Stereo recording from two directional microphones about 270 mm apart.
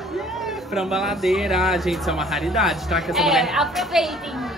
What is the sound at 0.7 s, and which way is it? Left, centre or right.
Speech, centre.